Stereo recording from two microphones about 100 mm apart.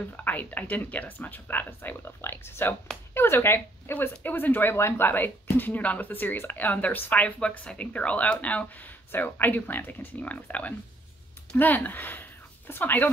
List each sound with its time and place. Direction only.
0.1 s speech: 20° left (ahead or behind)